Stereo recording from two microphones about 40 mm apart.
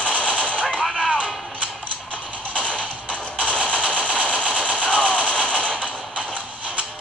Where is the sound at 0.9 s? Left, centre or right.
Left.